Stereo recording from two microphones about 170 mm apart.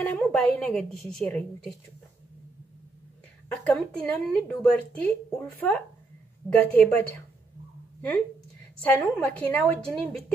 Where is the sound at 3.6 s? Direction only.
5° left (ahead or behind).